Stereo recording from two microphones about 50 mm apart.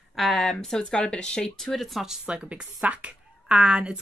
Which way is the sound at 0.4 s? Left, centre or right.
Centre.